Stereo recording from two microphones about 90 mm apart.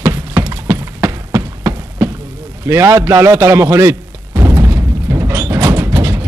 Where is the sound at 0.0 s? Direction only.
30° right (ahead or behind).